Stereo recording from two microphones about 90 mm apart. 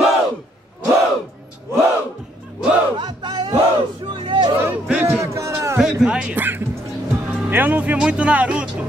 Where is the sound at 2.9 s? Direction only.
55° right (ahead or behind).